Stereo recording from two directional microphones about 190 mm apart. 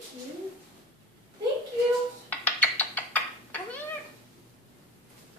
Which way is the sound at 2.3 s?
10° left (ahead or behind).